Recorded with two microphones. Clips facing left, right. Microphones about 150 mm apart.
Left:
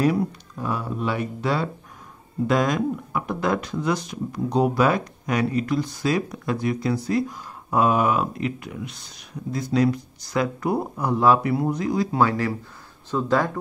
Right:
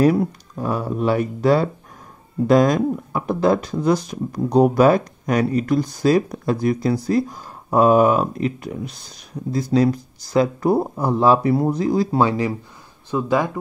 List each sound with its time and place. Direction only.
0.0 s speech: 40° right (ahead or behind)
12.2 s speech: 20° right (ahead or behind)